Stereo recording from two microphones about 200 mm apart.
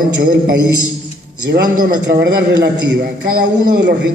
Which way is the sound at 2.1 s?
55° right (ahead or behind).